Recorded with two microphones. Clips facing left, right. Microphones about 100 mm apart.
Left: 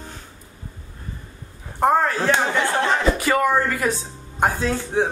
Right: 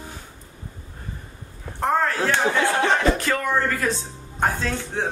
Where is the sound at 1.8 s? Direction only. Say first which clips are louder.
Left 3 dB; 15° left (ahead or behind).